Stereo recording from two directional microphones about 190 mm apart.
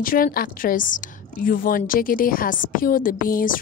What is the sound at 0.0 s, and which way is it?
A woman's voice, 50° left (ahead or behind).